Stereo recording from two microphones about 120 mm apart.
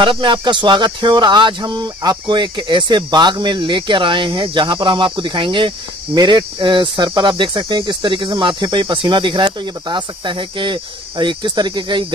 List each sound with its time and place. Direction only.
0.0 s speech: 45° right (ahead or behind)